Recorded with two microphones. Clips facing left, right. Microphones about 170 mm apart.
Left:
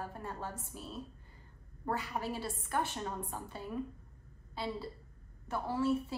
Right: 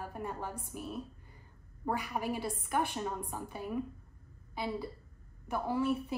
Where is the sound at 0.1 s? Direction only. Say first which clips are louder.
Right 3 dB; 15° right (ahead or behind).